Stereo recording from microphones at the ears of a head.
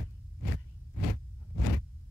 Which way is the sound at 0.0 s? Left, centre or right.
Left.